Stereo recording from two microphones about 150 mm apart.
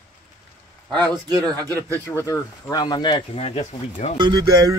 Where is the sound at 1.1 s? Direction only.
25° right (ahead or behind).